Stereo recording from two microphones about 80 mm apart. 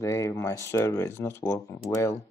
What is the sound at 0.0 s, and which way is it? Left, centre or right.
Speech, left.